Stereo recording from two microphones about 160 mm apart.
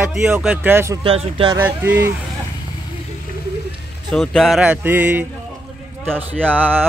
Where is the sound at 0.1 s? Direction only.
5° right (ahead or behind).